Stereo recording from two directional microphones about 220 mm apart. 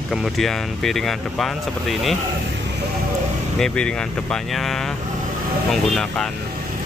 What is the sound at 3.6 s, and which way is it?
Speech, 5° left (ahead or behind).